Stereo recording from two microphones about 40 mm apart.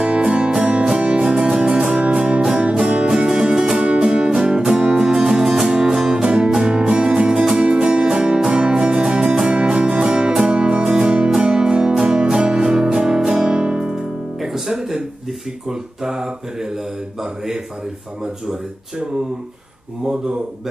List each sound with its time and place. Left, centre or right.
0.0 s music: right
1.2 s music: centre
3.3 s music: centre
6.6 s music: right
15.7 s mantra: centre
18.2 s speech: centre